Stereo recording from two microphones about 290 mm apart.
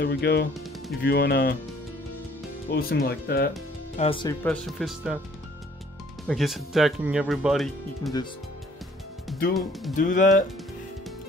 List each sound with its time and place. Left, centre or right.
0.0 s speech: left
2.7 s speech: left
3.9 s speech: centre
6.2 s speech: centre
9.5 s speech: centre
9.9 s speech: left